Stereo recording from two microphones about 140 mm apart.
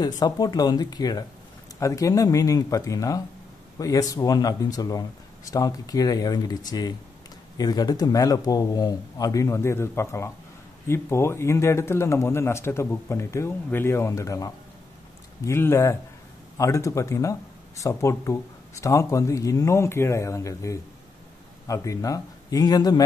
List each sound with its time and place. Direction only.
0.0 s speech: 30° left (ahead or behind)